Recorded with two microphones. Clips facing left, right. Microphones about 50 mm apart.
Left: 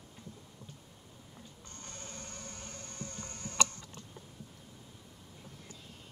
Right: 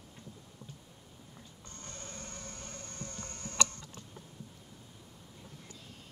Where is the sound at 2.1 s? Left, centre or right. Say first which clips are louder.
Right 1 dB; right.